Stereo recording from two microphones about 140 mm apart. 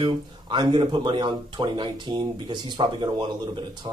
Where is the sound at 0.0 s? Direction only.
35° right (ahead or behind).